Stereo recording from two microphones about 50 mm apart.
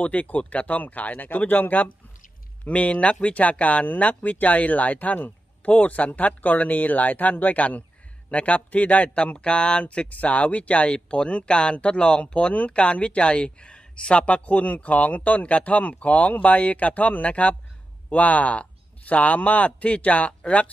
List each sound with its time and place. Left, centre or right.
0.0 s a man's voice: left